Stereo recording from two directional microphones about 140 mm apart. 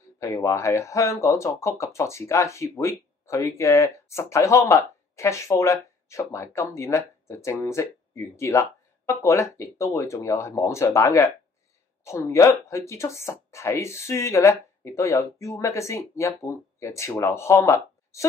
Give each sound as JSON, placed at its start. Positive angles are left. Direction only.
{"t": 0.2, "sound": "speech", "side_deg": 20}